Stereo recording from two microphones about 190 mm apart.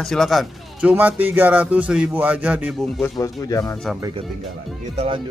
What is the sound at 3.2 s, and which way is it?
Speech, 15° left (ahead or behind).